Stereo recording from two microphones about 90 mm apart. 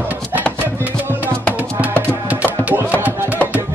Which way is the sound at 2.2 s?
20° right (ahead or behind).